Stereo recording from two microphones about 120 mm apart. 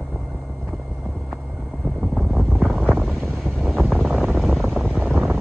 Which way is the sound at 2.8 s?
5° left (ahead or behind).